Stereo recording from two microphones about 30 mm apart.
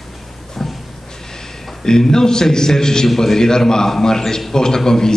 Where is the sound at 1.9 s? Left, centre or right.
Centre.